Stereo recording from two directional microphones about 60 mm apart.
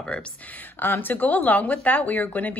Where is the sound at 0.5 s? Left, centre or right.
Left.